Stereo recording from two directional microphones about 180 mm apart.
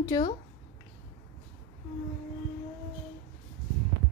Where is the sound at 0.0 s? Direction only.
20° left (ahead or behind).